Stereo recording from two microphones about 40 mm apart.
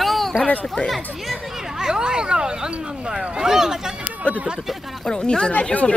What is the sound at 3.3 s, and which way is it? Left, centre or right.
Speech, centre.